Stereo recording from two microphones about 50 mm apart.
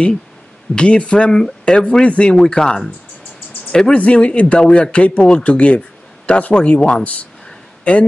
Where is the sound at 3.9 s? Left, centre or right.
Left.